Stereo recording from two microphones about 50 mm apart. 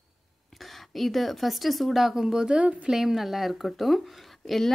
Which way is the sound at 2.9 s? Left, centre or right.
Centre.